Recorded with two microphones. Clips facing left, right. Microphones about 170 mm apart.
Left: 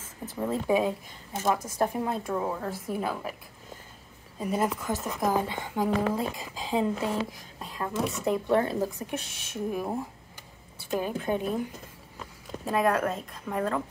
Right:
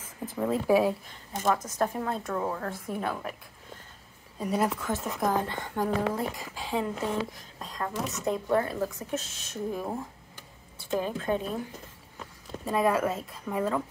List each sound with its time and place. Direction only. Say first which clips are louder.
0.5 s speech: right 2 dB; 5° right (ahead or behind)
1.3 s speech: even; 10° left (ahead or behind)
4.4 s speech: even; centre (ahead or behind)
4.9 s speech: left 1 dB; 10° left (ahead or behind)
12.6 s speech: even; centre (ahead or behind)